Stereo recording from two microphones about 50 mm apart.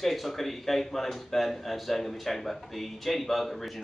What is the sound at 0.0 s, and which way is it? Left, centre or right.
Speech, centre.